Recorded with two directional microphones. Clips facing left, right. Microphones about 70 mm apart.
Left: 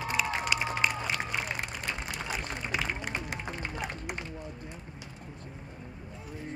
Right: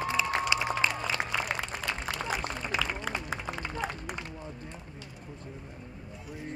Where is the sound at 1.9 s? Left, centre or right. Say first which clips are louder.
Right 1 dB; right.